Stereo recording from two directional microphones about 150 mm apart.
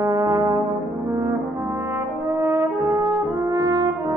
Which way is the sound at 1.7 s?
15° right (ahead or behind).